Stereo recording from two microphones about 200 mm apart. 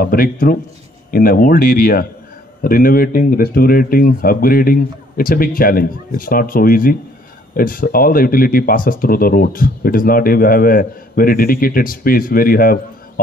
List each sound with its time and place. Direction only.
0.0 s speech: 45° left (ahead or behind)